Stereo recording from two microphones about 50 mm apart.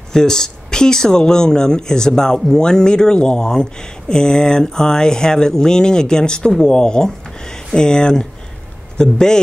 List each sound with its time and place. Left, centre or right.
0.1 s speech: centre